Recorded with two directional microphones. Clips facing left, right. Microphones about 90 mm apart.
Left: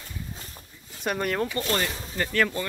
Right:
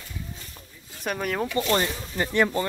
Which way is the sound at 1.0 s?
Centre (ahead or behind).